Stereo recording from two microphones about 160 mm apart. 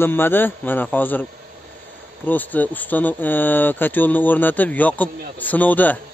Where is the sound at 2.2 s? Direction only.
10° left (ahead or behind).